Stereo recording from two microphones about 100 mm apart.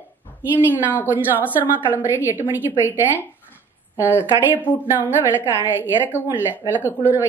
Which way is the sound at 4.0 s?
15° right (ahead or behind).